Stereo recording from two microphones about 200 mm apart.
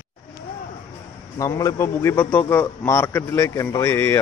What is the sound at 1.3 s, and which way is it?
A man's voice, 15° left (ahead or behind).